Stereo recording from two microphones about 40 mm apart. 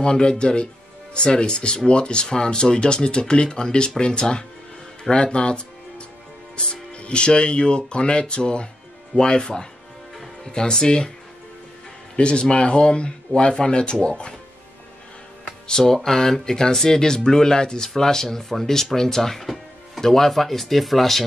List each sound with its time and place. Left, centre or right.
0.0 s speech: left
12.2 s speech: left
15.6 s speech: centre